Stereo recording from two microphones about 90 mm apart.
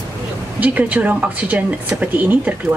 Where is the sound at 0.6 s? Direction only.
15° right (ahead or behind).